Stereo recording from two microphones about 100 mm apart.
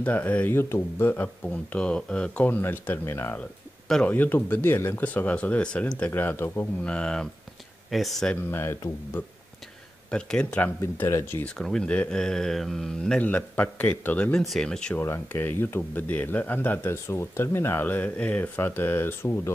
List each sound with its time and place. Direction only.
0.0 s speech: 15° left (ahead or behind)
6.8 s speech: 10° left (ahead or behind)
8.5 s speech: 25° left (ahead or behind)
10.1 s speech: 10° left (ahead or behind)
10.8 s speech: 30° left (ahead or behind)
11.4 s speech: 5° left (ahead or behind)
13.2 s speech: 15° left (ahead or behind)
14.4 s speech: centre (ahead or behind)
15.0 s speech: 25° left (ahead or behind)